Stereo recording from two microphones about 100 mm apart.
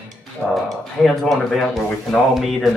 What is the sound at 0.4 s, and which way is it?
Speech, 20° right (ahead or behind).